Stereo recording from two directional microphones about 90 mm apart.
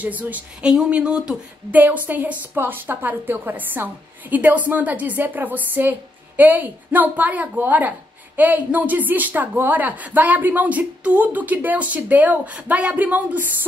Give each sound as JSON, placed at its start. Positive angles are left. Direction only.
{"t": 0.0, "sound": "speech", "side_deg": -20}